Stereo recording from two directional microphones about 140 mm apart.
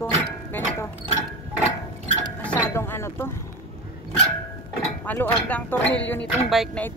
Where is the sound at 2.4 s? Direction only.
15° left (ahead or behind).